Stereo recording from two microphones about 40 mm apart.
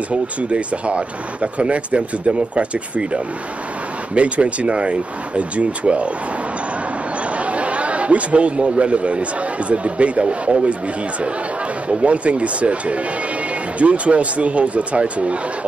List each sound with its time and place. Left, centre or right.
0.1 s speech: right
7.3 s a sound: right
9.7 s speech: right
11.9 s speech: right